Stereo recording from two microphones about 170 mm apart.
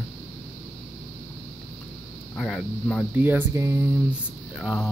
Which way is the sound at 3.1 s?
10° right (ahead or behind).